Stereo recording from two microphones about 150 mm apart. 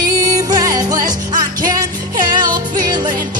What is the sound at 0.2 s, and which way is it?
Music, 25° right (ahead or behind).